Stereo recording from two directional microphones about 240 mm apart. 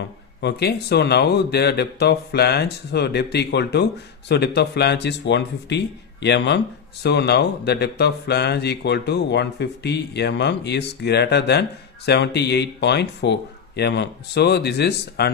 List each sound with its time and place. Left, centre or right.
0.4 s speech: left